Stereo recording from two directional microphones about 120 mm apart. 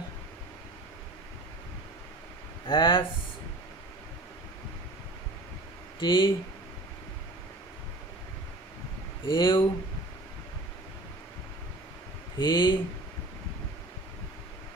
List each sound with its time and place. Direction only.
2.6 s speech: 45° left (ahead or behind)
5.9 s speech: 40° left (ahead or behind)
9.3 s speech: 40° left (ahead or behind)
12.4 s speech: 40° left (ahead or behind)